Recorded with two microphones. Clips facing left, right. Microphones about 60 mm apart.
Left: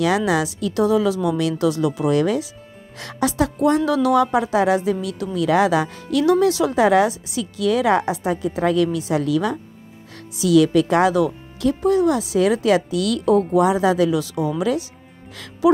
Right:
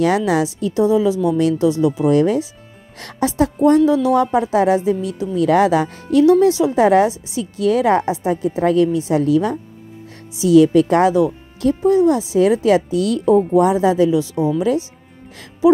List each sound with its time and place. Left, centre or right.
0.3 s speech: right
3.3 s speech: right
8.0 s a woman's voice: left
8.3 s speech: right